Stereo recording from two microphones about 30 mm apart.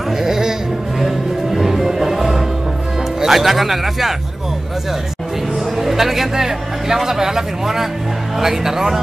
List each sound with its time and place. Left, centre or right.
0.2 s music: centre
0.9 s music: centre
3.2 s speech: centre
5.8 s a man's voice: centre